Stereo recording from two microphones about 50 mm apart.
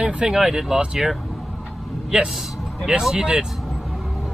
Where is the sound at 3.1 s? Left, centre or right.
Centre.